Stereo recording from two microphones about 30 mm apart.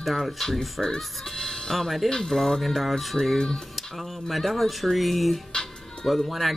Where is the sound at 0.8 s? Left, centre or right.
Centre.